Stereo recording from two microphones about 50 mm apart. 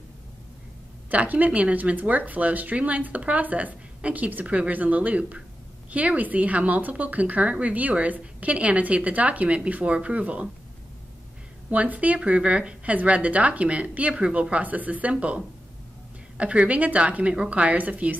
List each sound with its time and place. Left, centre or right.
1.1 s speech: right
11.7 s speech: right